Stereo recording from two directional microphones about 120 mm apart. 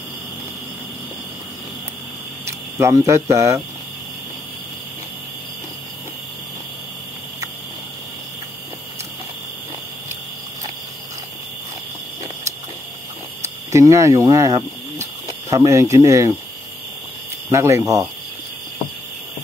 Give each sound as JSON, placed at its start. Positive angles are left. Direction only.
{"t": 2.4, "sound": "cricket", "side_deg": -25}
{"t": 3.3, "sound": "speech", "side_deg": -25}
{"t": 13.4, "sound": "cricket", "side_deg": -25}
{"t": 15.5, "sound": "speech", "side_deg": -25}
{"t": 17.5, "sound": "speech", "side_deg": -25}